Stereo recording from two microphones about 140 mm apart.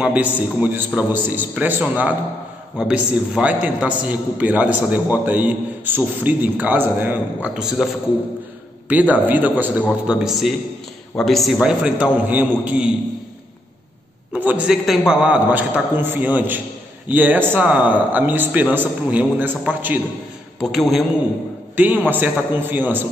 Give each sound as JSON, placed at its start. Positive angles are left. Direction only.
{"t": 0.0, "sound": "a man's voice", "side_deg": -10}
{"t": 14.3, "sound": "a man's voice", "side_deg": -10}
{"t": 20.6, "sound": "a man's voice", "side_deg": 0}
{"t": 21.7, "sound": "a man's voice", "side_deg": -10}